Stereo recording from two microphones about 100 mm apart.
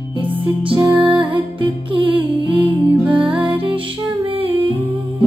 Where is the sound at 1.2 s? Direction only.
55° right (ahead or behind).